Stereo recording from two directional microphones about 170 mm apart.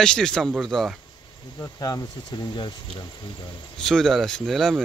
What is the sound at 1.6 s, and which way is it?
Speech, 20° left (ahead or behind).